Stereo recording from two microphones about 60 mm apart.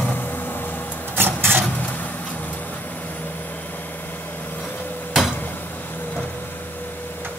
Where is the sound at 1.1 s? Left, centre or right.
Right.